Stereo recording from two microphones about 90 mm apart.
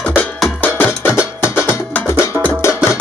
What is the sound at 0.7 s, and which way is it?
Music, 25° left (ahead or behind).